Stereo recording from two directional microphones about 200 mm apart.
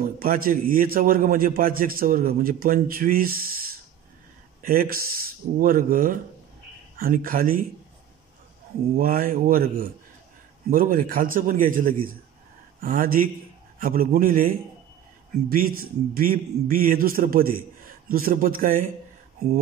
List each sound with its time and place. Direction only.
0.2 s a man's voice: 45° right (ahead or behind)
8.9 s a man's voice: 45° right (ahead or behind)
15.8 s a man's voice: 45° right (ahead or behind)